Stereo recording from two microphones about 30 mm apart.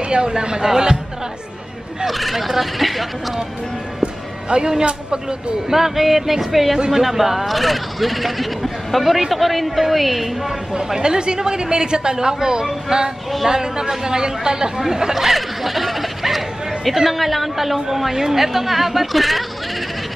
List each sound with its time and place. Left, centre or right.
0.1 s a woman's voice: right
2.0 s speech: centre
4.0 s speech: right
5.7 s a woman's voice: centre
10.7 s a woman's voice: right
15.1 s a sound: centre
17.1 s a woman's voice: centre